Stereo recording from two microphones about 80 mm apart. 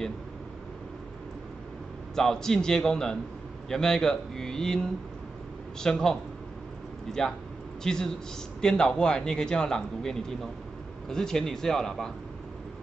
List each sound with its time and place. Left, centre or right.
2.1 s a man's voice: centre